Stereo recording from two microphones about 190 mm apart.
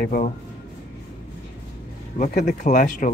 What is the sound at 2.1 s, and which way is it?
Speech, 40° left (ahead or behind).